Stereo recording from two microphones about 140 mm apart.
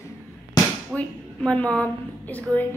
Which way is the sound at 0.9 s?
10° left (ahead or behind).